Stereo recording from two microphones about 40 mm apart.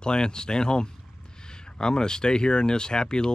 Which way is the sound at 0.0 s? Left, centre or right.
Left.